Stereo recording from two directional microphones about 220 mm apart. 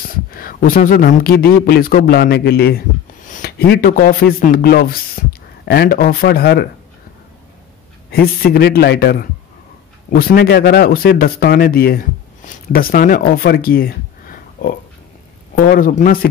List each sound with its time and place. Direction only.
0.3 s a man's voice: 40° left (ahead or behind)
8.1 s a man's voice: 45° left (ahead or behind)